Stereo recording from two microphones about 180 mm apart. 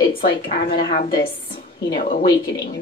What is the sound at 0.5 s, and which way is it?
Speech, 60° left (ahead or behind).